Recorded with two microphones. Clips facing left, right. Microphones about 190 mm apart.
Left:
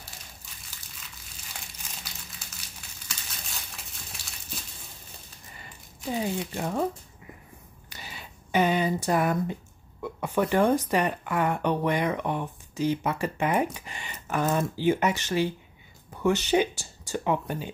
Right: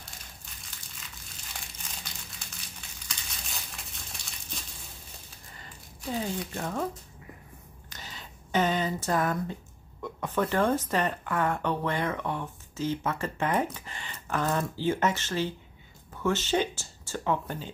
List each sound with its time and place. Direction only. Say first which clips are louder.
2.0 s crumpling: even; 5° left (ahead or behind)
3.1 s crushing: left 1 dB; centre (ahead or behind)
5.9 s crumpling: left 3 dB; 15° left (ahead or behind)
6.5 s speech: left 5 dB; 15° left (ahead or behind)
7.9 s a sound: left 2 dB; 10° left (ahead or behind)
10.0 s speech: left 2 dB; 10° left (ahead or behind)